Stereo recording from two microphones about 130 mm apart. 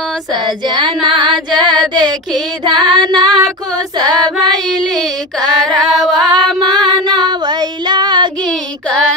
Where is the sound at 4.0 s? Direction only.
30° right (ahead or behind).